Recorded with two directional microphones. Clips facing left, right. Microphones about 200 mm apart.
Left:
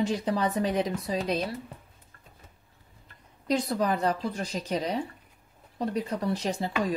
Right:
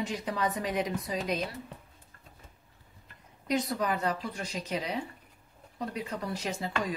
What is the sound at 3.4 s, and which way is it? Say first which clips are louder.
Speech: left 3 dB; 35° left (ahead or behind).